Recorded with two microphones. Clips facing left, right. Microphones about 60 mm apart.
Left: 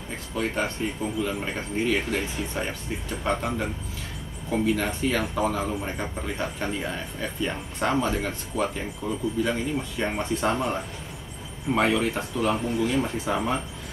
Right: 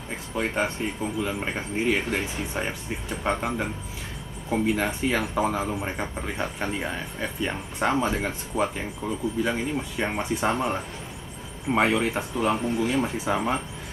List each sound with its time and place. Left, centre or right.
0.3 s speech: centre